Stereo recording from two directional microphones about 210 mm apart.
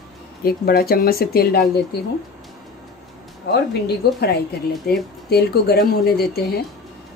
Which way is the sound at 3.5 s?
50° left (ahead or behind).